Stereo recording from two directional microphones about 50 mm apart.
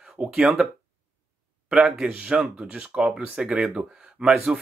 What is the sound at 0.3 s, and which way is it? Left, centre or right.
Speech, centre.